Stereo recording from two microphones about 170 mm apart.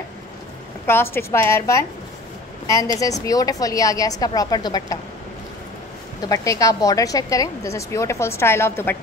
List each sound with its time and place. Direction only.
0.8 s a woman's voice: 15° left (ahead or behind)
3.0 s a woman's voice: 20° left (ahead or behind)
6.2 s a woman's voice: 20° left (ahead or behind)